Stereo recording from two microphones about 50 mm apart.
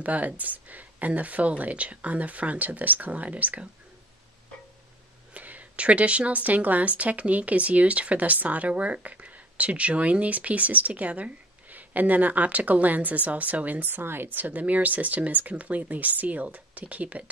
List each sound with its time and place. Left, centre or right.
0.0 s speech: right
5.3 s speech: right
13.8 s speech: right